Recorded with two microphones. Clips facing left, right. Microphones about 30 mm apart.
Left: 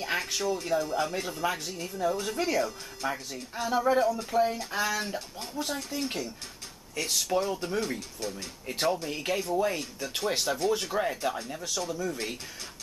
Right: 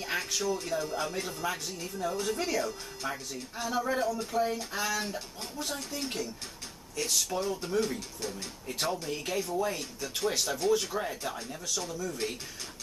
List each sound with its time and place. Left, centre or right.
0.0 s a sound: centre
0.6 s speech: centre
7.8 s speech: centre
8.6 s speech: centre